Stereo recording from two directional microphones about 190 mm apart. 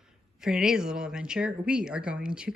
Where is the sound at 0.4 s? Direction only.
5° right (ahead or behind).